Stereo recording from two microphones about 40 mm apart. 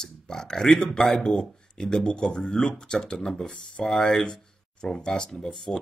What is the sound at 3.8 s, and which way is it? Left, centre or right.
Speech, centre.